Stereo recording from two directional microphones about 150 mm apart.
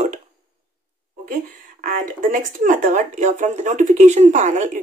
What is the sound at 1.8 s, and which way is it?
Speech, 60° right (ahead or behind).